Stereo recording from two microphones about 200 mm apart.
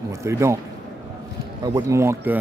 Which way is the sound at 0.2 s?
15° right (ahead or behind).